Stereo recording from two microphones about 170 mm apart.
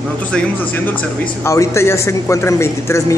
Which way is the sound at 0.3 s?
10° left (ahead or behind).